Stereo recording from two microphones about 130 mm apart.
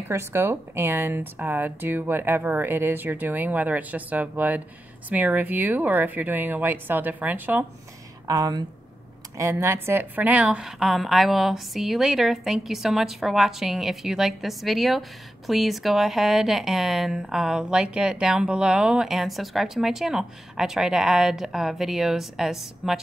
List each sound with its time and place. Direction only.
0.1 s speech: 20° right (ahead or behind)
8.3 s a woman's voice: 30° right (ahead or behind); by 22.9 s 5° right (ahead or behind)